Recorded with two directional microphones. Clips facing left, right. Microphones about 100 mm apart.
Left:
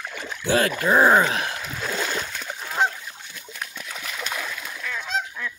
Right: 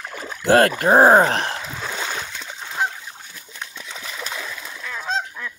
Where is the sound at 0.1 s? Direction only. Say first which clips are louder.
Right 7 dB; 35° right (ahead or behind).